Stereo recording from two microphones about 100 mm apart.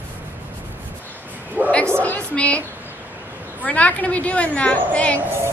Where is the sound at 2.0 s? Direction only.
15° left (ahead or behind).